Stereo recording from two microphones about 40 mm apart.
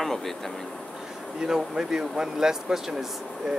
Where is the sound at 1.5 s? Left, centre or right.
Centre.